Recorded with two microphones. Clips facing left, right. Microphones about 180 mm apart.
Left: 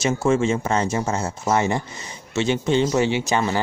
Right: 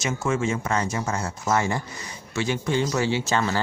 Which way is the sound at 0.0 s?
30° left (ahead or behind).